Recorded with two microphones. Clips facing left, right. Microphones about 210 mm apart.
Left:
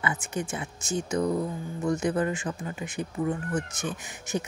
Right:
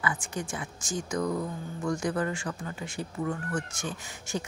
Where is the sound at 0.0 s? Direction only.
20° left (ahead or behind).